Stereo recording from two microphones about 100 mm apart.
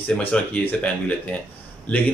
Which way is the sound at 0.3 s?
15° left (ahead or behind).